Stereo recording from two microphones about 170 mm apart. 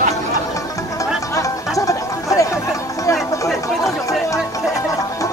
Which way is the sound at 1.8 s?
20° left (ahead or behind).